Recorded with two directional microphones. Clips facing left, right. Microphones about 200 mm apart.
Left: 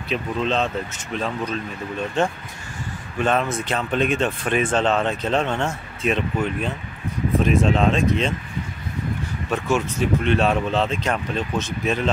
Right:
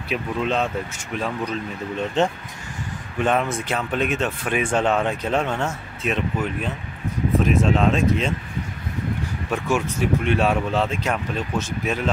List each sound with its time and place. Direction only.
0.1 s speech: 10° right (ahead or behind)
9.5 s speech: 15° right (ahead or behind)